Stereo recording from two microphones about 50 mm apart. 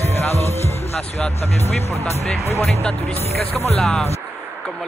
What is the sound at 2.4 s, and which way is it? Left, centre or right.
Speech, left.